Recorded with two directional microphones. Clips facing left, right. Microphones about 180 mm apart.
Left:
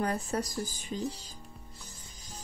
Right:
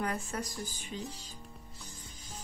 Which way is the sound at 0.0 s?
35° left (ahead or behind).